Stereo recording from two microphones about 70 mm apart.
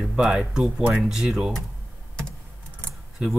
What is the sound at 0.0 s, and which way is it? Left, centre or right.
Speech, centre.